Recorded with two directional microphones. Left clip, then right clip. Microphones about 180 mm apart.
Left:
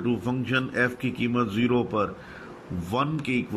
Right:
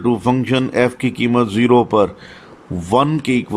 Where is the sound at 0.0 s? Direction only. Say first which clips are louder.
Right 12 dB; 25° right (ahead or behind).